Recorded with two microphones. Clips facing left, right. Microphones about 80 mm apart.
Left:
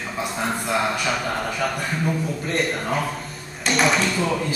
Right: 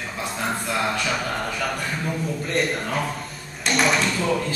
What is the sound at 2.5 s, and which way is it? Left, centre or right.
Speech, centre.